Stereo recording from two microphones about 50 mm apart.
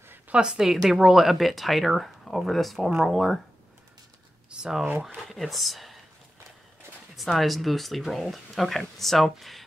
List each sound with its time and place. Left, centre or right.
0.3 s speech: centre
4.5 s a sound: centre
5.3 s speech: centre
7.2 s speech: centre